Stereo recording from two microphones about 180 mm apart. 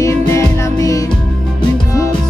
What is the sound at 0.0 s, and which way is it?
Music, 15° left (ahead or behind).